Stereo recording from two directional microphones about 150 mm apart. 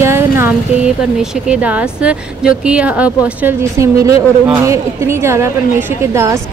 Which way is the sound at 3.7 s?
20° right (ahead or behind).